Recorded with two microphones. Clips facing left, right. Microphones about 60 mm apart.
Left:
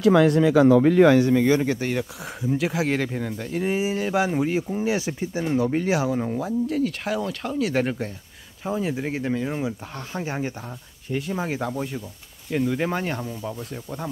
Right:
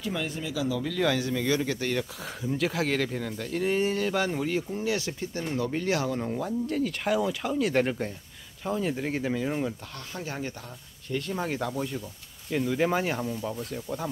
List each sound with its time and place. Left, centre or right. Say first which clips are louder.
0.0 s speech: left 16 dB; left; by 9.8 s centre
9.9 s speech: left 6 dB; left
11.1 s speech: left 3 dB; centre